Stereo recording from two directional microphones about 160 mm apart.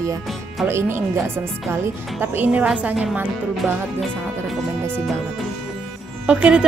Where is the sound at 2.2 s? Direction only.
10° right (ahead or behind).